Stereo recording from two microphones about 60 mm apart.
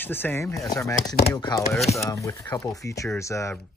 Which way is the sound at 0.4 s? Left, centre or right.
Left.